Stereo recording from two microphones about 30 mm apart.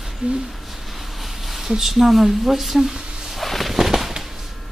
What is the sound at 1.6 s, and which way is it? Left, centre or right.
Speech, centre.